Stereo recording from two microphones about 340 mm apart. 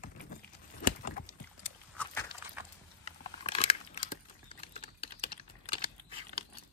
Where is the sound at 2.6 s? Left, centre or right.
Centre.